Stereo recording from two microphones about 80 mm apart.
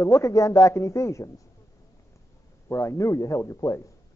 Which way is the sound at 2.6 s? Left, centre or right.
Left.